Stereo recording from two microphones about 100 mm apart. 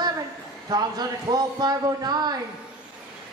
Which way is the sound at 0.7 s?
40° right (ahead or behind).